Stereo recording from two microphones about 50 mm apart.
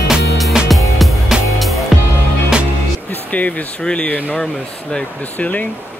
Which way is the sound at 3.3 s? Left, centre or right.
Left.